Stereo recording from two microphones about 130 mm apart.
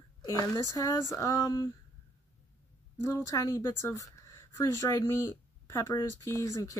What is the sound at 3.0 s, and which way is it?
Speech, 25° left (ahead or behind).